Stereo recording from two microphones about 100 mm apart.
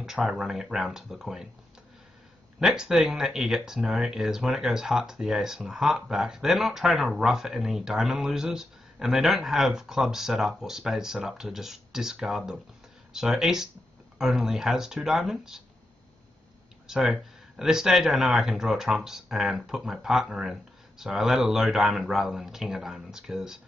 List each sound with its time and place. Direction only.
0.0 s speech: 5° right (ahead or behind)
2.6 s speech: 5° right (ahead or behind)
16.8 s speech: 5° right (ahead or behind)